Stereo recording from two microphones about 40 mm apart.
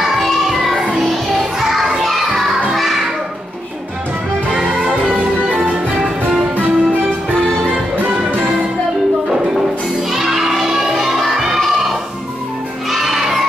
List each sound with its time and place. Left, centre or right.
0.0 s music: centre
2.0 s children playing: centre
4.7 s music: right
6.5 s music: right
10.1 s children shouting: centre
11.3 s music: centre
12.9 s crowd: centre